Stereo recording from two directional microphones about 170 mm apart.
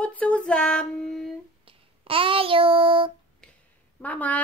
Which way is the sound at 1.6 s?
35° right (ahead or behind).